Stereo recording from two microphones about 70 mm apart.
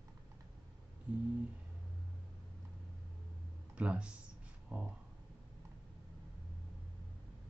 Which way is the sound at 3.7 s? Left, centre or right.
Centre.